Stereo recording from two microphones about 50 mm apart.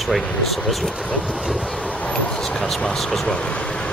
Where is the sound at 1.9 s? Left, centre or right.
Left.